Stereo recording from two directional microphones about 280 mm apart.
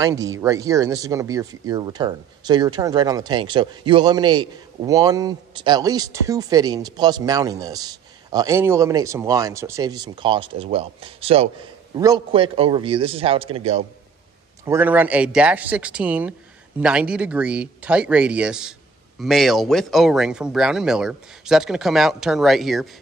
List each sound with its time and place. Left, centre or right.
0.0 s a man's voice: centre
14.6 s speech: centre